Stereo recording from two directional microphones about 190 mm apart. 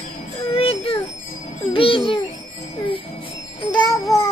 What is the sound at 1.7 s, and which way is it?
Music, 25° left (ahead or behind).